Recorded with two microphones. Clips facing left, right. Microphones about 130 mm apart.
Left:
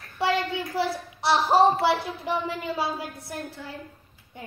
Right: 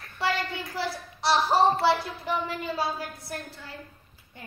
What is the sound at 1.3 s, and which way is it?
Speech, 15° left (ahead or behind).